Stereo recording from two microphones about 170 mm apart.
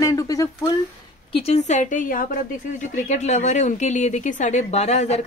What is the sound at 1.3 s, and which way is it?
A woman's voice, 40° left (ahead or behind).